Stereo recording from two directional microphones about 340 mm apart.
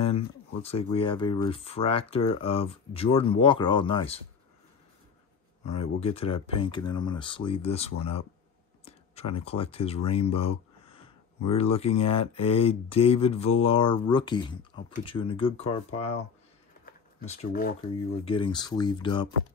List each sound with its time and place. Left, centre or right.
0.0 s speech: centre
5.7 s speech: centre
16.8 s a sound: centre
18.2 s speech: centre